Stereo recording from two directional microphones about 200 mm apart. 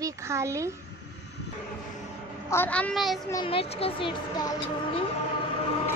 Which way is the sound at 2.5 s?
10° left (ahead or behind).